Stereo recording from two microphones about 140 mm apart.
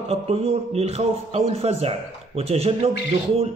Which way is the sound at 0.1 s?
45° right (ahead or behind).